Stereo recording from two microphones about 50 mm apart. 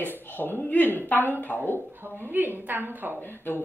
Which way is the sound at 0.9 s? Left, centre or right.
Left.